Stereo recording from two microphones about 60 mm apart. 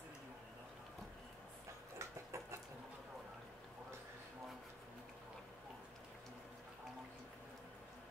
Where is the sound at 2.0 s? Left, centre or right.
Right.